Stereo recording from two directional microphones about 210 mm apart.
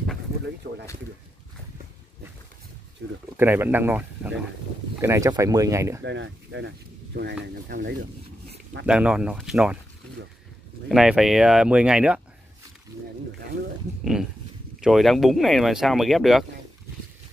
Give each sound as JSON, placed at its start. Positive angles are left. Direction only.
{"t": 3.0, "sound": "speech", "side_deg": -60}
{"t": 3.3, "sound": "speech", "side_deg": -10}
{"t": 6.0, "sound": "speech", "side_deg": -60}
{"t": 8.8, "sound": "speech", "side_deg": -5}
{"t": 10.9, "sound": "speech", "side_deg": 0}
{"t": 14.8, "sound": "speech", "side_deg": 0}